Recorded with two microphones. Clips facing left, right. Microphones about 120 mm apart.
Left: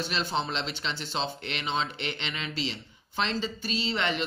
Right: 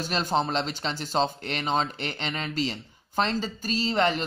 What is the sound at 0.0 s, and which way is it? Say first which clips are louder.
Speech: right 4 dB; 40° right (ahead or behind).